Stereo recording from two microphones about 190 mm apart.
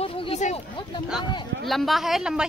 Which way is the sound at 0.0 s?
30° left (ahead or behind).